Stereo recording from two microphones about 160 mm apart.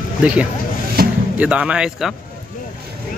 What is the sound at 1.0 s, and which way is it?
Music, 70° right (ahead or behind).